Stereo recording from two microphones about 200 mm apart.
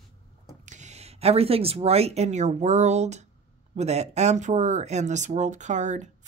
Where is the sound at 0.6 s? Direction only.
35° right (ahead or behind).